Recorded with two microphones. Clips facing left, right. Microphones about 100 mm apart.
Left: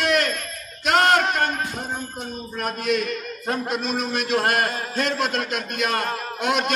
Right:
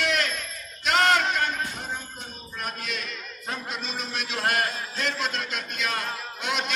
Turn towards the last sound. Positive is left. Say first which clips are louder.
# left 6 dB
turn(degrees=55)  # may be behind; listen again after turning